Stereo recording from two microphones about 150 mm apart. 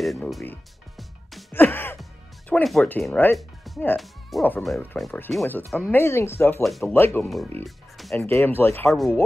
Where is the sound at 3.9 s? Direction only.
Centre (ahead or behind).